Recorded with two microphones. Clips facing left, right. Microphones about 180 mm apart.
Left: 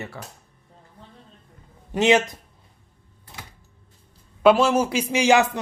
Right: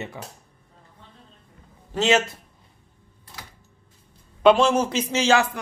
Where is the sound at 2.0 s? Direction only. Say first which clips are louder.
Left 2 dB; 15° left (ahead or behind).